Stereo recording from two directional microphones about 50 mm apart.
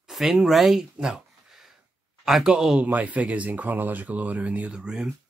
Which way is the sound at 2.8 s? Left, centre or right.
Right.